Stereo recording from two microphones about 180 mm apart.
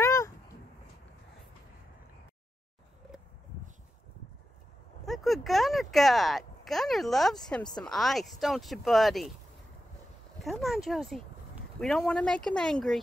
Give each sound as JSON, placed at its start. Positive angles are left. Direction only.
{"t": 0.0, "sound": "a sound", "side_deg": 15}
{"t": 5.0, "sound": "speech", "side_deg": 0}
{"t": 10.4, "sound": "speech", "side_deg": 0}